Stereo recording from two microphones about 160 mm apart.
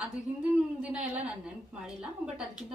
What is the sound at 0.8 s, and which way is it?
A woman's voice, 10° right (ahead or behind).